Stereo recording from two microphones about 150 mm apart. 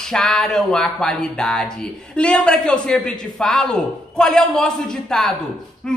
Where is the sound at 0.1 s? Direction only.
5° left (ahead or behind).